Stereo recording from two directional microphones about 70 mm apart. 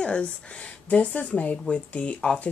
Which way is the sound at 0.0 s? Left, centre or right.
Centre.